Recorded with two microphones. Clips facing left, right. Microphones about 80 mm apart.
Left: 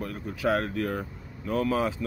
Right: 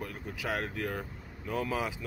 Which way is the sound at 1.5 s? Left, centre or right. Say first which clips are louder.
Left 7 dB; centre.